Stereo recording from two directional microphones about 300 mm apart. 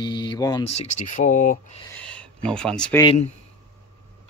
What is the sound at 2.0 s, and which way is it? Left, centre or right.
Speech, centre.